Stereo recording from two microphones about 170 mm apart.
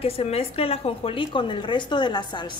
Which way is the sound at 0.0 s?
35° left (ahead or behind).